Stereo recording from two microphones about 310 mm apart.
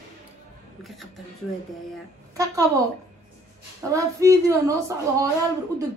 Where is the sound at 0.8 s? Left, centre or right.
Centre.